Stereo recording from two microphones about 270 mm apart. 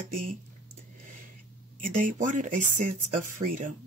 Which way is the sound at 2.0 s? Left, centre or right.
Right.